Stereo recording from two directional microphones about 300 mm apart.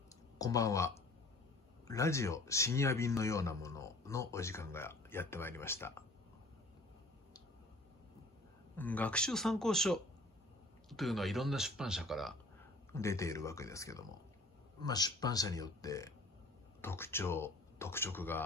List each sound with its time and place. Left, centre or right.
0.4 s speech: centre
8.7 s speech: centre